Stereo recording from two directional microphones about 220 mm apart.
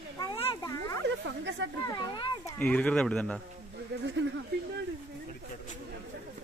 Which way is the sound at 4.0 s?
55° right (ahead or behind).